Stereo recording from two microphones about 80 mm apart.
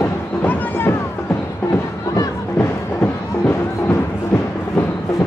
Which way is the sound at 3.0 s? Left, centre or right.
Left.